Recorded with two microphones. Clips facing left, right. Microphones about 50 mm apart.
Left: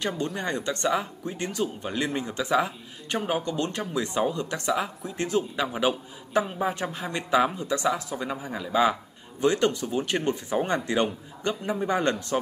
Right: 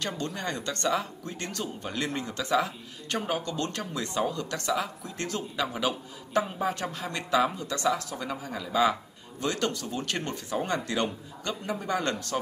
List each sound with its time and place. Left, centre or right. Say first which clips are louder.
0.4 s a woman's voice: left 3 dB; centre